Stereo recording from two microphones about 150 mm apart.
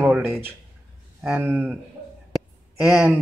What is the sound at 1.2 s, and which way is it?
Speech, 10° right (ahead or behind).